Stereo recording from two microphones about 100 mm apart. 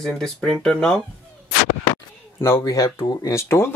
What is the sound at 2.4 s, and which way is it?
Speech, 25° left (ahead or behind).